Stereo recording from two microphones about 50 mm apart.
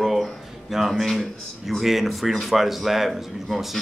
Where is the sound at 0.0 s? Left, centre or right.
Centre.